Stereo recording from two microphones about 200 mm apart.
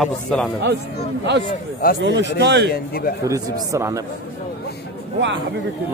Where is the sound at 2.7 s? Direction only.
50° left (ahead or behind).